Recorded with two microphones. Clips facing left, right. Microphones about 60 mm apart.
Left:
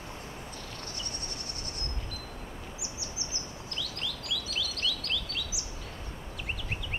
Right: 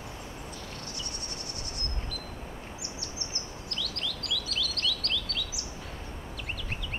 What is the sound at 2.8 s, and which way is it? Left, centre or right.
Chirp, centre.